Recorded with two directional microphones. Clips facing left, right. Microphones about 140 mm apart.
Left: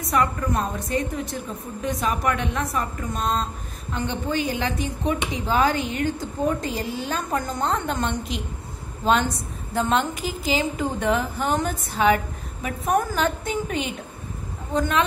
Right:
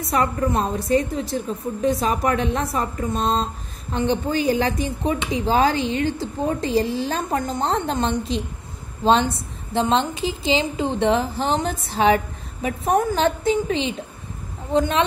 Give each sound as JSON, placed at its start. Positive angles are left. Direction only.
{"t": 0.0, "sound": "a woman's voice", "side_deg": -30}
{"t": 7.2, "sound": "a woman's voice", "side_deg": -25}